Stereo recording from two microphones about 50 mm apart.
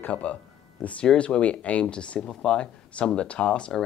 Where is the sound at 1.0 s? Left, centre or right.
Centre.